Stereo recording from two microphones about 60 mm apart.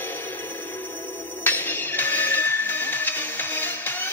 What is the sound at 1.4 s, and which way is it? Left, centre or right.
Music, left.